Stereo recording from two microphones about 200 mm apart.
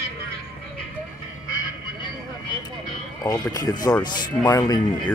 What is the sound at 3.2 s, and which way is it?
Speech, 15° left (ahead or behind).